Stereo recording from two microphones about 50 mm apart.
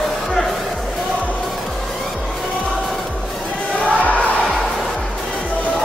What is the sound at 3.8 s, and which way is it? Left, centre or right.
Music, left.